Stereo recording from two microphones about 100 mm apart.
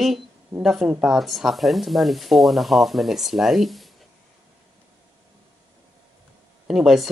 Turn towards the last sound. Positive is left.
turn(degrees=0)  # may be behind; listen again after turning